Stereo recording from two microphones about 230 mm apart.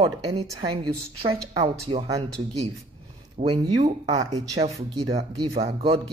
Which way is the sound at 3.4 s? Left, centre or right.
Right.